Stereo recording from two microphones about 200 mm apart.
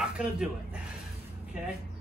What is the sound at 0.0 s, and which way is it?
Speech, 5° right (ahead or behind).